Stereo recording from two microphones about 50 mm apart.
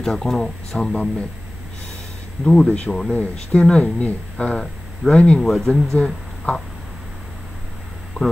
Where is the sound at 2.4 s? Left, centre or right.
Centre.